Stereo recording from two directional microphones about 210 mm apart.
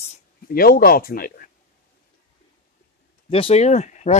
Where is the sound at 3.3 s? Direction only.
30° left (ahead or behind).